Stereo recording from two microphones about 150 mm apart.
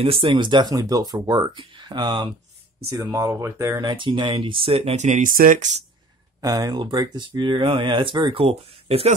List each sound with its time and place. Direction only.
0.0 s speech: 35° right (ahead or behind)
2.9 s speech: 20° right (ahead or behind); by 5.9 s 55° right (ahead or behind)
6.4 s speech: 25° right (ahead or behind); by 9.1 s 40° right (ahead or behind)